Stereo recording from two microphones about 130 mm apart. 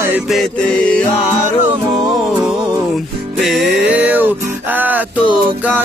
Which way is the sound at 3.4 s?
Centre (ahead or behind).